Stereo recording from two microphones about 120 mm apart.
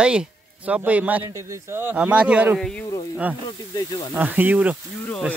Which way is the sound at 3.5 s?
35° left (ahead or behind).